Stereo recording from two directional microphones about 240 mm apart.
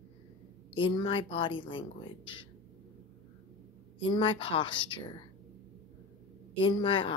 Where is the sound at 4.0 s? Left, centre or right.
Left.